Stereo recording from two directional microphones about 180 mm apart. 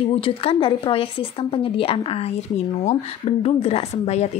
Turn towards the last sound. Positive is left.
turn(degrees=35)  # may be behind; listen again after turning